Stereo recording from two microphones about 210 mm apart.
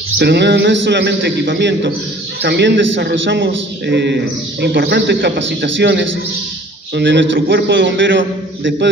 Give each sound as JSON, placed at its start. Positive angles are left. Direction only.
{"t": 0.2, "sound": "a man's voice", "side_deg": -50}